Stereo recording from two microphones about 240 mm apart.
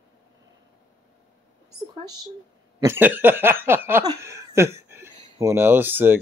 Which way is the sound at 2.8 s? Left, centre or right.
Centre.